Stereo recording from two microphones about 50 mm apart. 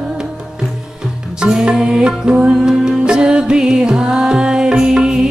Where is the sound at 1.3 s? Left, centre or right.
Centre.